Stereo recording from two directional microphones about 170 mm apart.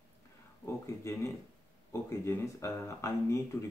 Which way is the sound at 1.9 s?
15° left (ahead or behind).